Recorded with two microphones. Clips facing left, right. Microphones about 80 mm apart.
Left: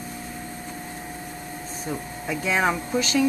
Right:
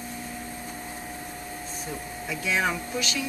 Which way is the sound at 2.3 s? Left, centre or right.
Left.